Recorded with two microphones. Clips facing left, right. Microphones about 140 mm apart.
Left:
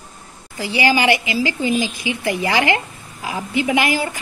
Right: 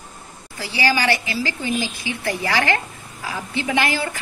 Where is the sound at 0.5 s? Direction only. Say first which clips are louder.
Left 4 dB; 15° left (ahead or behind).